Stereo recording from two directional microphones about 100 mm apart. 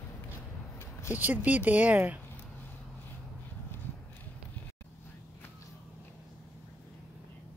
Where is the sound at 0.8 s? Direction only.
30° left (ahead or behind).